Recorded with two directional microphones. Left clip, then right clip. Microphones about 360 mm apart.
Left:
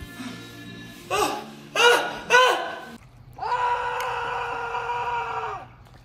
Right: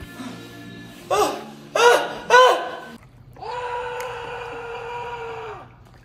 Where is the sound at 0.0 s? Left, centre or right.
Centre.